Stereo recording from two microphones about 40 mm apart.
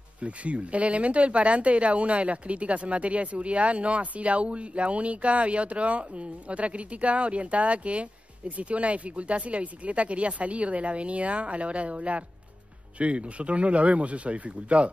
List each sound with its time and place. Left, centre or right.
0.2 s speech: right